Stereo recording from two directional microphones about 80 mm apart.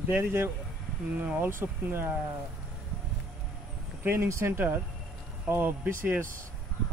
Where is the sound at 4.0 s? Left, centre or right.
Right.